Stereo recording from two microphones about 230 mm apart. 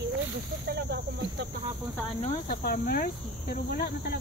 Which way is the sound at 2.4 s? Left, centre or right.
Left.